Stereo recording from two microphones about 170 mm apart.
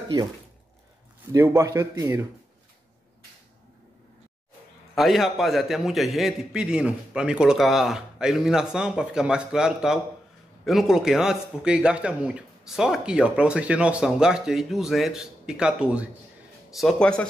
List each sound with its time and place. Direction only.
1.3 s a man's voice: 15° right (ahead or behind)
4.9 s a man's voice: centre (ahead or behind)